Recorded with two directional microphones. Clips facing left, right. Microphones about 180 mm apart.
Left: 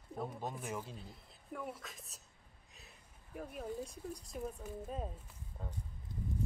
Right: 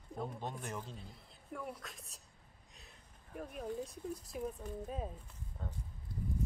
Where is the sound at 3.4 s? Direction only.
Centre (ahead or behind).